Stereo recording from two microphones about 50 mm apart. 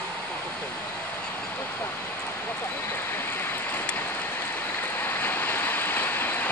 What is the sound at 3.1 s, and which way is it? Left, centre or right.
Vehicle, left.